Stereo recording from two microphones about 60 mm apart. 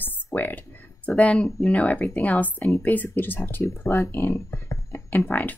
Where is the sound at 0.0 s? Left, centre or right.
Left.